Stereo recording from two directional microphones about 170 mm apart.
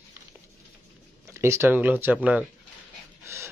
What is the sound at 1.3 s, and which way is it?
Speech, 15° right (ahead or behind).